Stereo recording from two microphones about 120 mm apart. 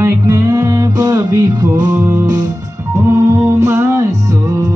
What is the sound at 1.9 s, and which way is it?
Music, 15° right (ahead or behind).